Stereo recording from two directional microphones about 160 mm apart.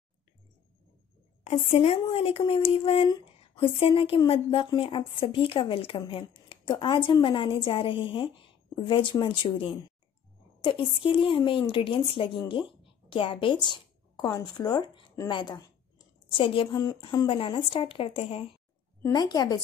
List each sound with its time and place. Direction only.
1.4 s speech: 40° left (ahead or behind)
19.0 s a woman's voice: 25° left (ahead or behind)